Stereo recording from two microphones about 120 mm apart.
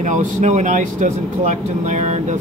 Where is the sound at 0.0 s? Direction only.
90° right.